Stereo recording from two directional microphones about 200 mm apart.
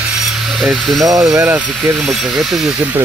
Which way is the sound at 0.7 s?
Centre (ahead or behind).